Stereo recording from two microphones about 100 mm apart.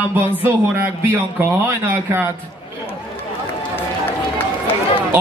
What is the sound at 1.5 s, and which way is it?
Speech, 25° right (ahead or behind).